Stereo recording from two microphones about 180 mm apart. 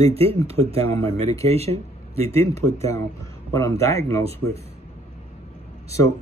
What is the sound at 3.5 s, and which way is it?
Speech, 15° left (ahead or behind).